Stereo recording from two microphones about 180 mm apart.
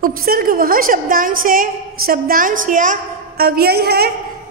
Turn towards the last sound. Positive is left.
turn(degrees=-60)  # may be behind; listen again after turning